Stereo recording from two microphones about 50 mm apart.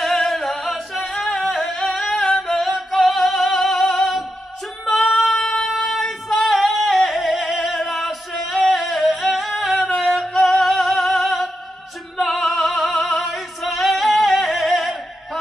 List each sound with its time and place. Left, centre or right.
0.0 s singing: centre
1.1 s singing: centre
5.4 s a sound: centre
6.0 s yodeling: centre
7.6 s singing: centre
10.0 s music: centre
13.3 s singing: centre